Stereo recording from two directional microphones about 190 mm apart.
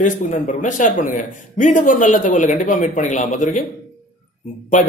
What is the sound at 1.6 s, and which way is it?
Speech, 40° left (ahead or behind).